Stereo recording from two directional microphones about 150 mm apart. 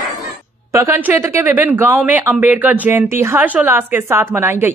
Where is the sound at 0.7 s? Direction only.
20° right (ahead or behind).